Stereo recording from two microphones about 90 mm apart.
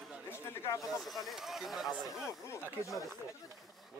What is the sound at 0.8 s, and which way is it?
Speech, centre (ahead or behind).